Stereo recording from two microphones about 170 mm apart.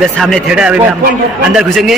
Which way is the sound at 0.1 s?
Centre (ahead or behind).